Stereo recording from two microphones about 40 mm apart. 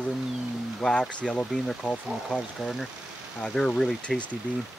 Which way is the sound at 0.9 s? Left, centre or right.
Left.